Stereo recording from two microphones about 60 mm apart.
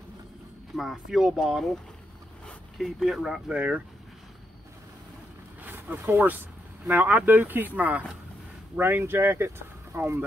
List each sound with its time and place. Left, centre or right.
0.7 s speech: centre
2.8 s speech: centre
3.3 s speech: centre
5.6 s speech: right